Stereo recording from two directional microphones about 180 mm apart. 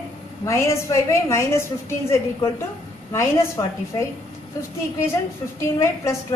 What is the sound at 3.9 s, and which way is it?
Speech, 25° left (ahead or behind).